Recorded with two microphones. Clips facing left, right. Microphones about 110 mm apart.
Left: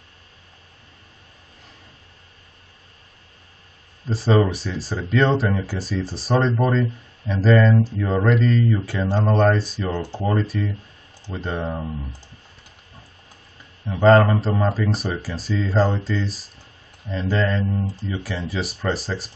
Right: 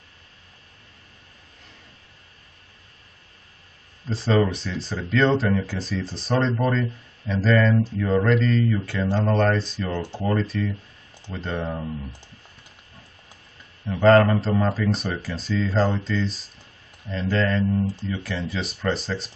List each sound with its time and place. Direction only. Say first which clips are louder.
4.1 s speech: left 2 dB; 5° left (ahead or behind)
9.0 s speech: left 1 dB; 20° left (ahead or behind)
9.3 s speech: left 5 dB; 10° left (ahead or behind)
14.0 s speech: left 1 dB; centre (ahead or behind)